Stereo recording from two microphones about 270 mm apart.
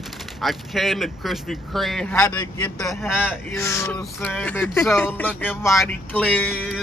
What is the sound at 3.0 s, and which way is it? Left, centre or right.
Speech, centre.